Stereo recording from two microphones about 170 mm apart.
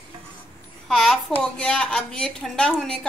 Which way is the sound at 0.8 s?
Centre (ahead or behind).